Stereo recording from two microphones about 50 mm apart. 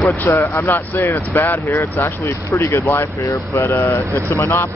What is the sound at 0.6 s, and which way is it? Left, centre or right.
Speech, left.